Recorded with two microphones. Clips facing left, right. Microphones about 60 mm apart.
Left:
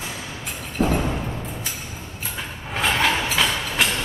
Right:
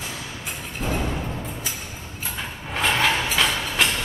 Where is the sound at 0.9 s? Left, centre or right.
Centre.